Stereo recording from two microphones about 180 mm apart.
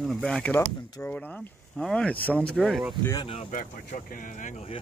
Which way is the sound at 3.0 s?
25° left (ahead or behind).